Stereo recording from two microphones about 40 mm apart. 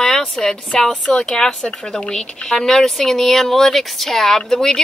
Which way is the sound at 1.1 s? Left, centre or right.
Centre.